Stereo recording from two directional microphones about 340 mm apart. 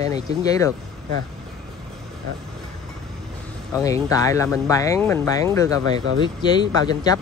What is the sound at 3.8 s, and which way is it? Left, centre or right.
Speech, centre.